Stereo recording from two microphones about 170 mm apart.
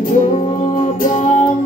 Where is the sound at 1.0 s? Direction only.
50° left (ahead or behind).